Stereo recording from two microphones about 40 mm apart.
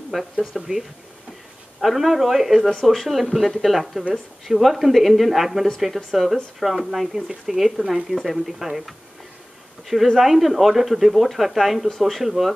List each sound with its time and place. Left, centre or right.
0.4 s speech: centre